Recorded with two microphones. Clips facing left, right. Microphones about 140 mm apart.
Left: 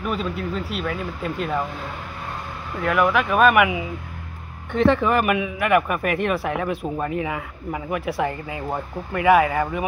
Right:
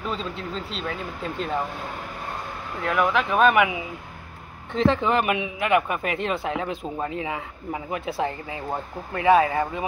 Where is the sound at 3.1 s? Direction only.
30° right (ahead or behind).